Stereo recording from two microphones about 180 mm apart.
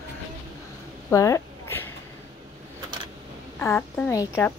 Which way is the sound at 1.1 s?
15° left (ahead or behind).